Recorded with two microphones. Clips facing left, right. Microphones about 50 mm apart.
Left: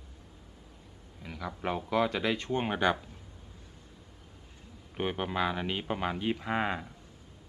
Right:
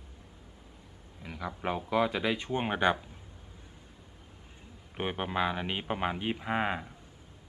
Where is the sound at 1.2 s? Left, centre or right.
Centre.